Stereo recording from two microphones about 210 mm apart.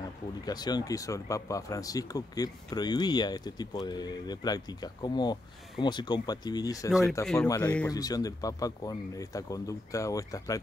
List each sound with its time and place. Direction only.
0.5 s speech: 20° left (ahead or behind)